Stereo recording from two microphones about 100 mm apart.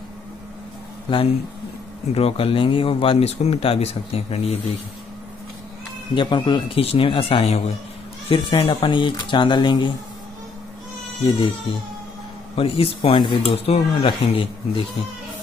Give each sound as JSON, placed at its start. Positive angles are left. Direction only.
{"t": 2.1, "sound": "speech", "side_deg": 70}
{"t": 6.1, "sound": "speech", "side_deg": 50}
{"t": 6.8, "sound": "speech", "side_deg": 75}
{"t": 8.3, "sound": "speech", "side_deg": 65}
{"t": 8.6, "sound": "speech", "side_deg": 55}
{"t": 11.2, "sound": "speech", "side_deg": 65}
{"t": 12.5, "sound": "speech", "side_deg": 65}